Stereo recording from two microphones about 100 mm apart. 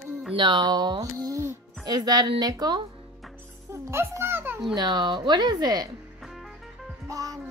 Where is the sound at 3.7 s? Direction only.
25° right (ahead or behind).